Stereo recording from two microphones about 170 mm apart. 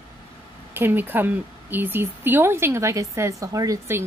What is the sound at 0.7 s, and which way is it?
Speech, 10° right (ahead or behind).